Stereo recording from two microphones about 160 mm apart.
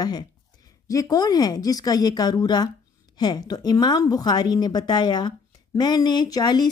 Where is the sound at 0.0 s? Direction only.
25° left (ahead or behind).